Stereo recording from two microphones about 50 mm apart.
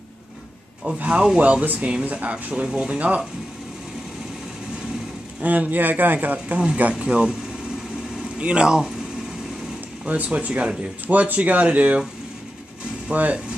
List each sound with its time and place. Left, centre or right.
0.9 s speech: right
5.4 s speech: right; by 7.3 s centre
8.4 s speech: right
10.0 s speech: right
13.1 s speech: right